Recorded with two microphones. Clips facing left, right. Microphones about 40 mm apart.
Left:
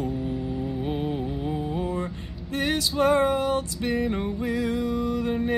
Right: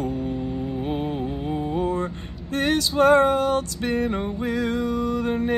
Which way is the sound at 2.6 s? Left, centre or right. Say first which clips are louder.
Right 4 dB; right.